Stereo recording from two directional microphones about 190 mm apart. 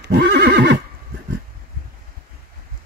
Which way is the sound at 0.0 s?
65° right (ahead or behind).